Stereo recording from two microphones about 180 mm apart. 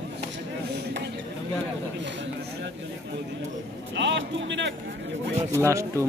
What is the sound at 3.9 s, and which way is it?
Speech, 85° right.